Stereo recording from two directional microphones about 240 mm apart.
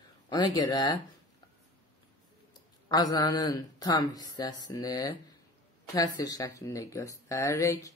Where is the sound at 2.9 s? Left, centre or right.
Centre.